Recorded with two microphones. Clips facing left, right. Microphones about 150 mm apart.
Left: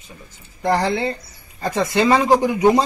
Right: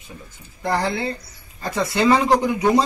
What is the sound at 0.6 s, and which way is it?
Speech, 20° left (ahead or behind).